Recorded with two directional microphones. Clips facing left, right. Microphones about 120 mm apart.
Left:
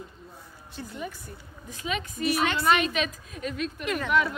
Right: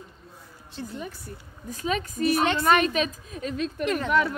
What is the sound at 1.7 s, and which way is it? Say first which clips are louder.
A woman's voice: right 4 dB; 40° right (ahead or behind).